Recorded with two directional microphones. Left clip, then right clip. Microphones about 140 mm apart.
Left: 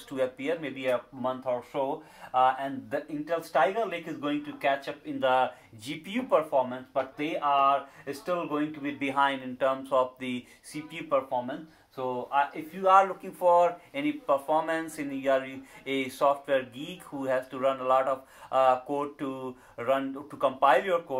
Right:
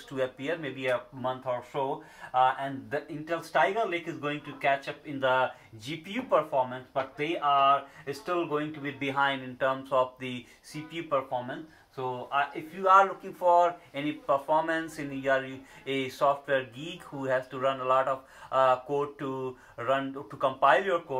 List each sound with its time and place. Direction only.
0.1 s speech: 25° left (ahead or behind)
6.5 s speech: 15° left (ahead or behind)
12.8 s speech: 30° left (ahead or behind)